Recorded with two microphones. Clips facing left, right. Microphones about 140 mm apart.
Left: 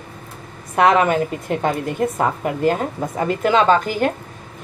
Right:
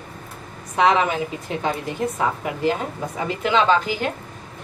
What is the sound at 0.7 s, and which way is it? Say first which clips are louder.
A woman's voice: left 3 dB; 55° left (ahead or behind).